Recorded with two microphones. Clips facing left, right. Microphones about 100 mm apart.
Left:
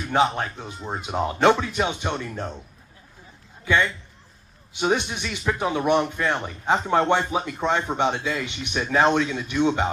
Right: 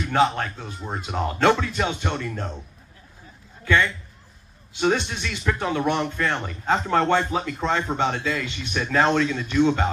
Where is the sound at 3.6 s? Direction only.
15° left (ahead or behind).